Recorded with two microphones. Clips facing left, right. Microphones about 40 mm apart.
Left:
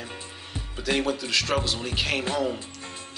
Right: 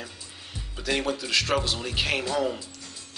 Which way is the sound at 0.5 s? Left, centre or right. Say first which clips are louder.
Left 1 dB; centre.